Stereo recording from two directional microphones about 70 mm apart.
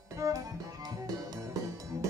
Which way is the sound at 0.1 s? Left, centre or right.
Right.